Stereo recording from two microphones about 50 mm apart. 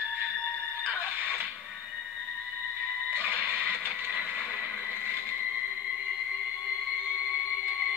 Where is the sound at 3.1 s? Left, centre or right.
Right.